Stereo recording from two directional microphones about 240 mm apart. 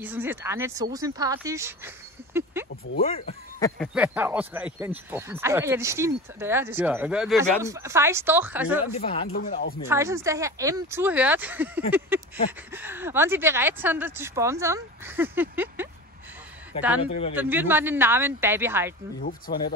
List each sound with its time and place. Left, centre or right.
0.0 s speech: centre
2.6 s a sound: centre
3.0 s speech: left
3.7 s speech: centre
7.6 s speech: centre
8.9 s speech: left
9.5 s speech: left
9.8 s speech: centre
17.4 s speech: centre
19.2 s speech: left